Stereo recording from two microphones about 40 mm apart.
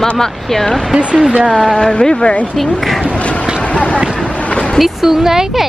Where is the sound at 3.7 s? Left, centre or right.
Left.